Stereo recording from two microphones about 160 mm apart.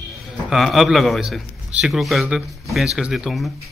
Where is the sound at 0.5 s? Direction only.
Centre (ahead or behind).